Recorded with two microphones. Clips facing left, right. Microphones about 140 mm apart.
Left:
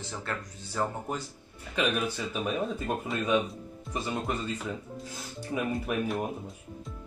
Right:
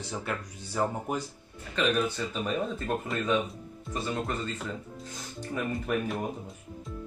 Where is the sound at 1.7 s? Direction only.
10° left (ahead or behind).